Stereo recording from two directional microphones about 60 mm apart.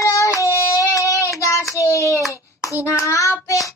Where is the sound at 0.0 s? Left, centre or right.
Left.